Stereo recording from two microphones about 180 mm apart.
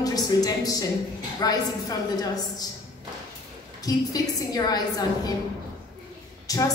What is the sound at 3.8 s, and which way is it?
A woman's voice, 20° left (ahead or behind).